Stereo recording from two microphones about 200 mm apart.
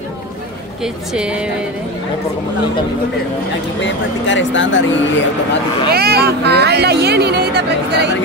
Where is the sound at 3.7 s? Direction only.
65° left (ahead or behind).